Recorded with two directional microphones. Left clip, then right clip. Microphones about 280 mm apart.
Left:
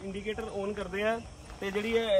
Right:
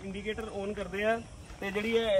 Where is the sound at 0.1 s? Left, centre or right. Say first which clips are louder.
Left 1 dB; centre.